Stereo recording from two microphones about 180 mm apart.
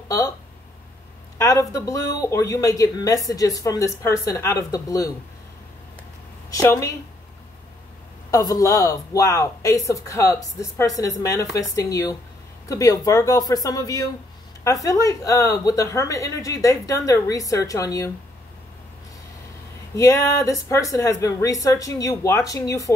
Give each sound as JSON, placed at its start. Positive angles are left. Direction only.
{"t": 1.4, "sound": "a woman's voice", "side_deg": 20}
{"t": 6.5, "sound": "speech", "side_deg": 15}
{"t": 8.3, "sound": "a woman's voice", "side_deg": 20}
{"t": 20.0, "sound": "speech", "side_deg": 20}